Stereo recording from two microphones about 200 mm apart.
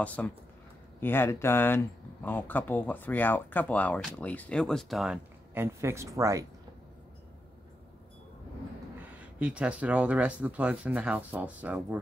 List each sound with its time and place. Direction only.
0.0 s speech: 5° left (ahead or behind); by 6.4 s 15° right (ahead or behind)
9.2 s speech: 5° right (ahead or behind)